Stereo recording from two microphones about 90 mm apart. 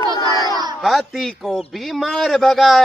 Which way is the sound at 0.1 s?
45° left (ahead or behind).